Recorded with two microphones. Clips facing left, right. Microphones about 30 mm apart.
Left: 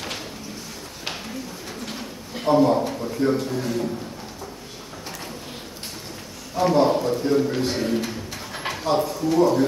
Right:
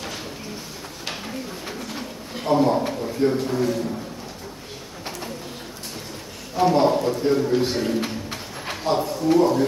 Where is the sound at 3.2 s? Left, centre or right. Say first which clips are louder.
Right 1 dB; right.